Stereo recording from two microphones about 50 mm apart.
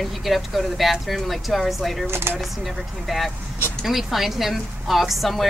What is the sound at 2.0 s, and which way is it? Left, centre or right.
Speech, right.